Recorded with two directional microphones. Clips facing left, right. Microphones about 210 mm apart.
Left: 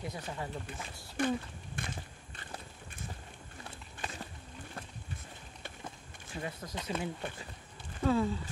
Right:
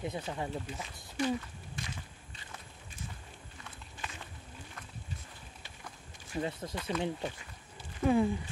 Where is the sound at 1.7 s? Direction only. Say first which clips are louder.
Left 2 dB; 55° left (ahead or behind).